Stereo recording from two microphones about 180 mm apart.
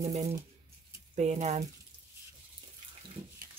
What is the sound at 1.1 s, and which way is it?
Speech, 40° right (ahead or behind).